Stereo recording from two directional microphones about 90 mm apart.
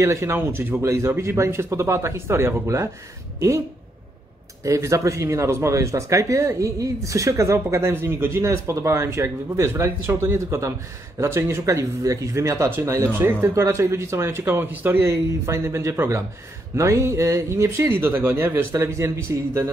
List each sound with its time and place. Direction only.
0.0 s speech: 30° right (ahead or behind)
4.6 s speech: 35° right (ahead or behind)